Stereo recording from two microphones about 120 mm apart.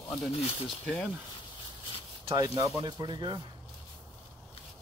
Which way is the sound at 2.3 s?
30° right (ahead or behind).